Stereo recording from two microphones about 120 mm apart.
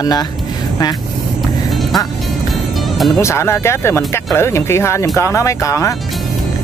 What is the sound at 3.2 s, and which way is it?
Speech, 20° left (ahead or behind).